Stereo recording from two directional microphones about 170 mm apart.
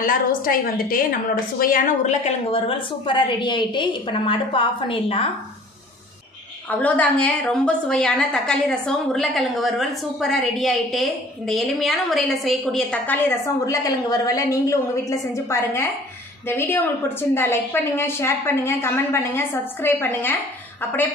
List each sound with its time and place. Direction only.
0.0 s a woman's voice: 55° left (ahead or behind); by 5.3 s 30° left (ahead or behind)
6.7 s a woman's voice: 10° left (ahead or behind)
13.7 s a woman's voice: 20° left (ahead or behind)